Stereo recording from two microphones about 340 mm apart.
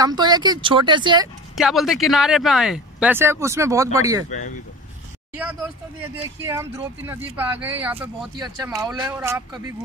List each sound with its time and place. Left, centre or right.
0.0 s speech: centre
1.5 s speech: centre
4.3 s speech: left
6.4 s speech: centre